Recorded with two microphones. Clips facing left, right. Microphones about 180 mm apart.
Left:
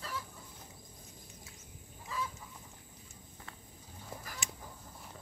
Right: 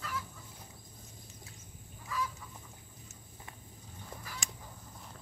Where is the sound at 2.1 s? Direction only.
25° left (ahead or behind).